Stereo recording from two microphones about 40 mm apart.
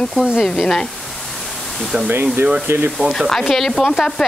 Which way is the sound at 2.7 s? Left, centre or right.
Right.